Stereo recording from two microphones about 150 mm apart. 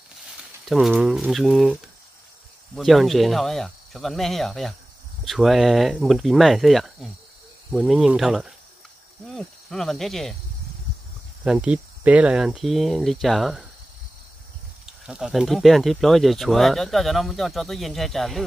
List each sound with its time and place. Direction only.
0.7 s speech: centre (ahead or behind)
11.4 s speech: 10° right (ahead or behind)
15.0 s speech: 5° right (ahead or behind)